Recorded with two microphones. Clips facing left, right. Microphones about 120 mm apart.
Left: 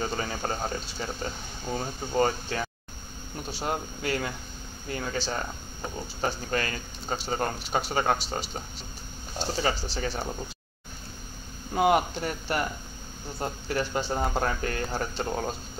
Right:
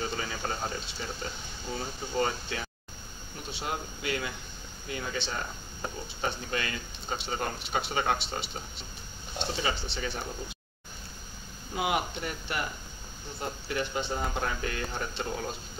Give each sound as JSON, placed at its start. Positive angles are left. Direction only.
{"t": 0.0, "sound": "a sound", "side_deg": 40}
{"t": 2.1, "sound": "speech", "side_deg": 45}
{"t": 11.7, "sound": "speech", "side_deg": 45}